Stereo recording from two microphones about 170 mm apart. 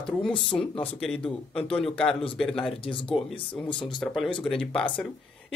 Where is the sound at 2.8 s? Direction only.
30° left (ahead or behind).